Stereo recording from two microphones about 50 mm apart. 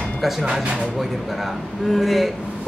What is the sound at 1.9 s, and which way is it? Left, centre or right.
Speech, centre.